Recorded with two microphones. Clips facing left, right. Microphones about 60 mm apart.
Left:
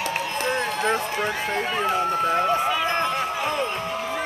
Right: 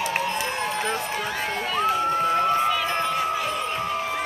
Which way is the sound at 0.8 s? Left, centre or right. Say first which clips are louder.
Left 3 dB; left.